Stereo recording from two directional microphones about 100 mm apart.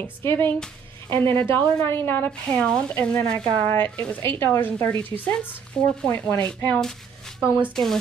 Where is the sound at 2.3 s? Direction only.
10° left (ahead or behind).